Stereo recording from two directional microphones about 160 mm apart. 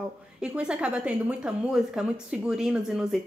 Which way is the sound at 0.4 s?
5° right (ahead or behind).